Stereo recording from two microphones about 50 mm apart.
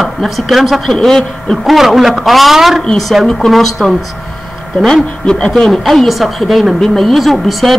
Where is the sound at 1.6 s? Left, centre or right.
Centre.